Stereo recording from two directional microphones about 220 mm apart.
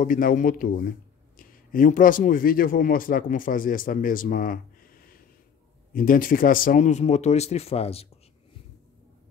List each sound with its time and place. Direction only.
0.0 s a man's voice: 40° left (ahead or behind)